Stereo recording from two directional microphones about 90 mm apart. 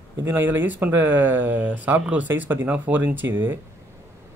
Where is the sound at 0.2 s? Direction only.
25° right (ahead or behind).